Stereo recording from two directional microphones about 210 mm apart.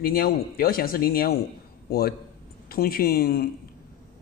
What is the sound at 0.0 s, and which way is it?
Speech, 45° left (ahead or behind).